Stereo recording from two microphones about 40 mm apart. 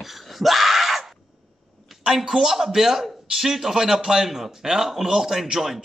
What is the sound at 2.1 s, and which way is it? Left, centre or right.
A man's voice, centre.